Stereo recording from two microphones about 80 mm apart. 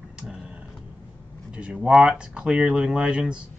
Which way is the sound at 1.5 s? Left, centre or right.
Centre.